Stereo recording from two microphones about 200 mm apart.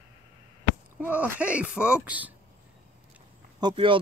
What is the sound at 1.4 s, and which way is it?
Speech, 5° right (ahead or behind).